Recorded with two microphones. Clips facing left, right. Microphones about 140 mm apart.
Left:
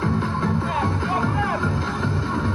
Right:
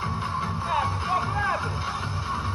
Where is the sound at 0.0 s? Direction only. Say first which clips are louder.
Left 8 dB; 55° left (ahead or behind).